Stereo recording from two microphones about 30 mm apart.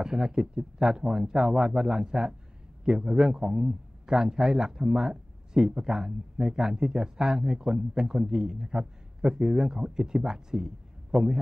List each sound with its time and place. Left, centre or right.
0.0 s a man's voice: right